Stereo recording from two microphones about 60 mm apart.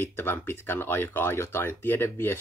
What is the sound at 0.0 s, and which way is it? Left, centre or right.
A man's voice, left.